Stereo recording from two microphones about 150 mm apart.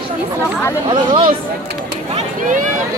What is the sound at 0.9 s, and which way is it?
Speech, 30° right (ahead or behind).